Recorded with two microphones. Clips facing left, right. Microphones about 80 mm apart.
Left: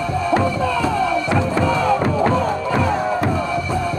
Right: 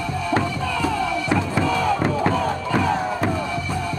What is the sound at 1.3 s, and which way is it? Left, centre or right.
Music, left.